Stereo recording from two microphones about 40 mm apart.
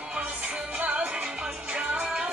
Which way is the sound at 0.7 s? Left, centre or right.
Right.